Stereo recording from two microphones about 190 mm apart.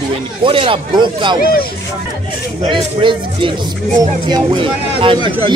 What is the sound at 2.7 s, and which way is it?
Speech, 25° right (ahead or behind).